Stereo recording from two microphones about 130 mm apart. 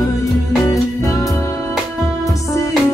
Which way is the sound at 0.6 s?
25° left (ahead or behind).